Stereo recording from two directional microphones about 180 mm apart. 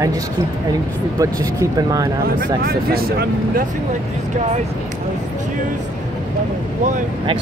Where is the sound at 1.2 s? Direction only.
20° right (ahead or behind).